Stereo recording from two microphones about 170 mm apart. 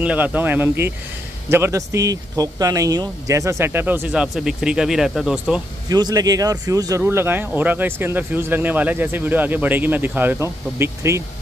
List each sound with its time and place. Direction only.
0.0 s speech: 10° right (ahead or behind)
5.9 s speech: 25° right (ahead or behind)